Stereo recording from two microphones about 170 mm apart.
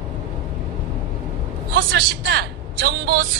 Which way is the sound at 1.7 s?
65° right (ahead or behind).